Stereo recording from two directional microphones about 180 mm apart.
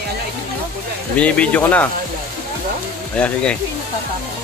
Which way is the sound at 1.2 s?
5° left (ahead or behind).